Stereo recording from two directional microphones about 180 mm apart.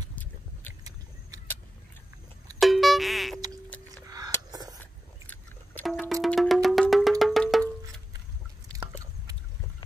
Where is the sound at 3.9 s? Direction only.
20° right (ahead or behind).